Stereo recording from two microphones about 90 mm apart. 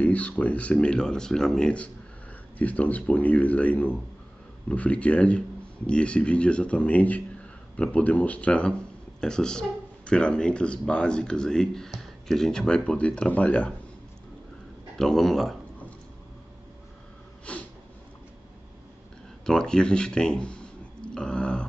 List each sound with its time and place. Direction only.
0.0 s speech: 15° left (ahead or behind)
15.0 s speech: 5° left (ahead or behind)
17.5 s snort: 15° left (ahead or behind)
19.4 s a sound: 10° left (ahead or behind)